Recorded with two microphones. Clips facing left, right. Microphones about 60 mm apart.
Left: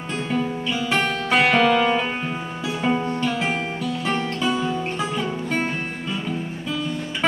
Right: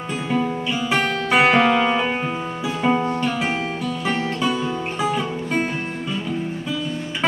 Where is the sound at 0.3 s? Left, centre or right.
Centre.